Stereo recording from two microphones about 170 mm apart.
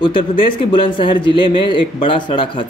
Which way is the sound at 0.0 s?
30° left (ahead or behind).